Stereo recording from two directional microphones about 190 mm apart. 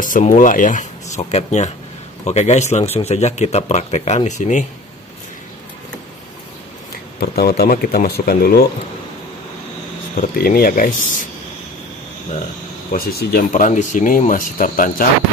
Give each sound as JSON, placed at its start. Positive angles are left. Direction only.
{"t": 0.0, "sound": "speech", "side_deg": 45}
{"t": 7.2, "sound": "speech", "side_deg": 55}
{"t": 10.2, "sound": "speech", "side_deg": 50}
{"t": 12.9, "sound": "speech", "side_deg": 55}